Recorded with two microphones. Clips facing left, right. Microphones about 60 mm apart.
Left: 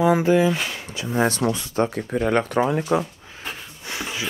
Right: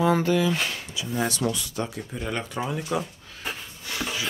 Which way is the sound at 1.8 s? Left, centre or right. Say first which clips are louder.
Left 9 dB; left.